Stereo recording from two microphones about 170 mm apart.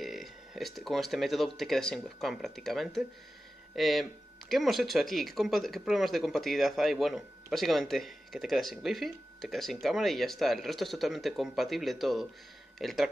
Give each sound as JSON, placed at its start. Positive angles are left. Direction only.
{"t": 0.0, "sound": "speech", "side_deg": 0}